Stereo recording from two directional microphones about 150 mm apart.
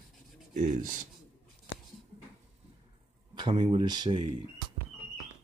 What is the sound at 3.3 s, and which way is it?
Speech, 30° right (ahead or behind).